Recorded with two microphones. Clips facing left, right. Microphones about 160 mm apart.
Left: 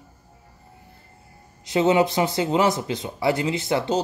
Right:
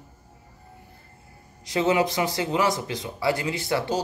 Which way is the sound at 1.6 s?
25° left (ahead or behind).